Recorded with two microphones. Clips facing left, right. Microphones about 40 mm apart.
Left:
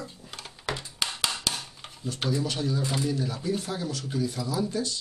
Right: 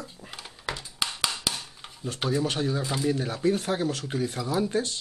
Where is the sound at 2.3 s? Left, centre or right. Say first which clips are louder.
Right 2 dB; right.